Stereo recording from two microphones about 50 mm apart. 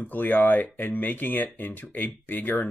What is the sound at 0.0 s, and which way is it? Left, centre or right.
Speech, left.